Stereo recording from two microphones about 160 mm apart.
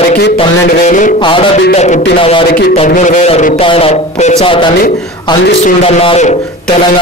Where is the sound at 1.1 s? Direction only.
30° left (ahead or behind).